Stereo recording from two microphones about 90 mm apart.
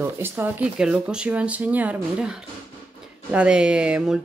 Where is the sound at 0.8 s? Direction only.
10° right (ahead or behind).